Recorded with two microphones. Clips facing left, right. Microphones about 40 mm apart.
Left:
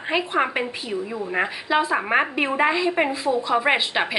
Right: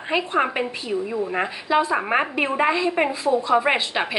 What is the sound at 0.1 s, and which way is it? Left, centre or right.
A woman's voice, centre.